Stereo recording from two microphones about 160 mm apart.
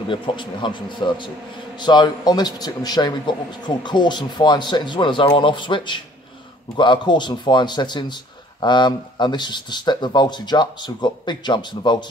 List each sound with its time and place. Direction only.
0.1 s a man's voice: 30° left (ahead or behind)